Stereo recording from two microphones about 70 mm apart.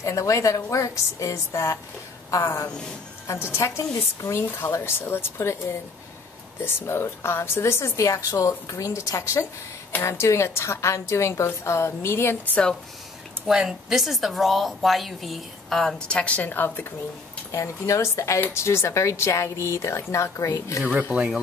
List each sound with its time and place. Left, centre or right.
0.0 s a woman's voice: left
4.9 s a woman's voice: left
13.5 s speech: centre
16.2 s a woman's voice: left
17.5 s a woman's voice: left